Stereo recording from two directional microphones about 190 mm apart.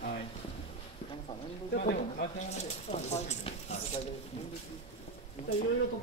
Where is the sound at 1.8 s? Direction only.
50° left (ahead or behind).